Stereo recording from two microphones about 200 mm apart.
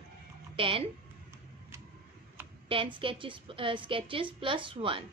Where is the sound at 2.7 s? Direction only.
25° right (ahead or behind).